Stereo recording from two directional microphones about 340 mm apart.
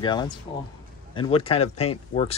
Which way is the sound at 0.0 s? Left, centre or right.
Centre.